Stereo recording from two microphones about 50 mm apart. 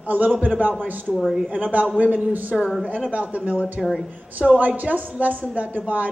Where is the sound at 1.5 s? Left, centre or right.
Right.